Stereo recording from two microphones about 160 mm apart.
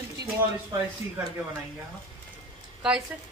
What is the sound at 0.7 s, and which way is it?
Speech, 20° right (ahead or behind).